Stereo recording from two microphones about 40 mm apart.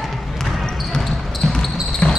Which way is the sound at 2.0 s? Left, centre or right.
Left.